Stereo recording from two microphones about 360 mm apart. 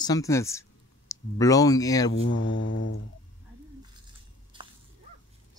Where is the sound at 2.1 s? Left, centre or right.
Left.